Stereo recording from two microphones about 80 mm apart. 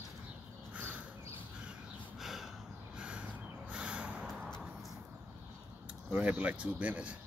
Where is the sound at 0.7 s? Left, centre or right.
Centre.